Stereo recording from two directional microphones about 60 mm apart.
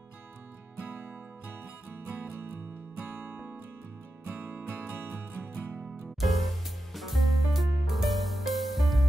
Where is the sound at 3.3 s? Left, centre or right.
Right.